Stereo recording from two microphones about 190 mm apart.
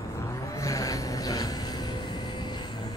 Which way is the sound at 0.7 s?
15° left (ahead or behind).